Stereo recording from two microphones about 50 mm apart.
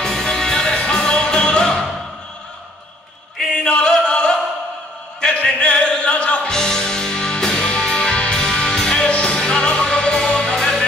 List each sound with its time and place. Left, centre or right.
0.0 s music: centre
3.5 s a sound: centre
5.2 s music: left